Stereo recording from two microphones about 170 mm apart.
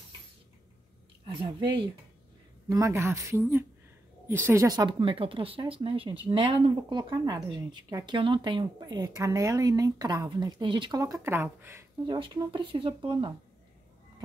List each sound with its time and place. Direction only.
1.2 s a sound: 30° right (ahead or behind)
2.7 s a woman's voice: 15° right (ahead or behind)
12.2 s speech: 30° right (ahead or behind)